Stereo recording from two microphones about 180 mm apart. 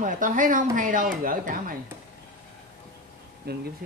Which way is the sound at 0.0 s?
45° right (ahead or behind).